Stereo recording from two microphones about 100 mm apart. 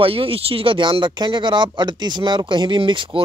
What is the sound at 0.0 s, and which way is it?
Speech, 70° right (ahead or behind).